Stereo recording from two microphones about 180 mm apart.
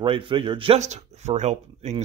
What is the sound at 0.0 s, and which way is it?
Speech, 30° right (ahead or behind).